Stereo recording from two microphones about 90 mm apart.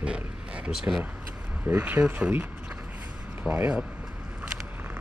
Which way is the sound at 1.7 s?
20° right (ahead or behind).